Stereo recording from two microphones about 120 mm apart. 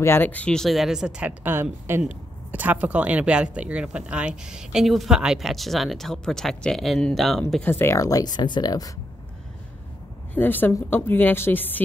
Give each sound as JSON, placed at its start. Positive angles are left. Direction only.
{"t": 0.0, "sound": "speech", "side_deg": 15}
{"t": 7.6, "sound": "speech", "side_deg": 20}
{"t": 10.3, "sound": "a woman's voice", "side_deg": 15}